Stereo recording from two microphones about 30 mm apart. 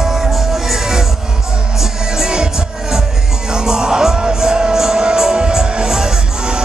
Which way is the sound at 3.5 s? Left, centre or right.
Right.